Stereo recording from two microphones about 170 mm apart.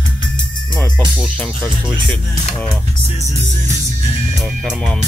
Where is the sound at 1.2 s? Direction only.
5° left (ahead or behind).